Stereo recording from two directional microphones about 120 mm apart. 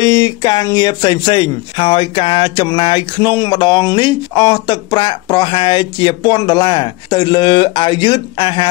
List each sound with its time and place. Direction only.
0.0 s speech: 35° left (ahead or behind)